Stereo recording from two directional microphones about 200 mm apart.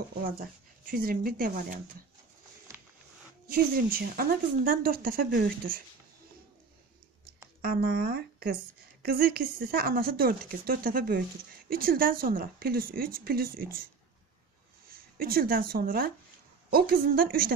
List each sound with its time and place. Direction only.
0.2 s speech: 45° right (ahead or behind)
3.4 s speech: 50° right (ahead or behind)
7.6 s speech: 45° right (ahead or behind)
14.9 s speech: 45° right (ahead or behind)